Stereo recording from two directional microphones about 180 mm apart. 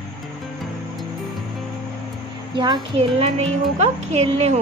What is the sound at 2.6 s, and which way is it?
Speech, 30° right (ahead or behind).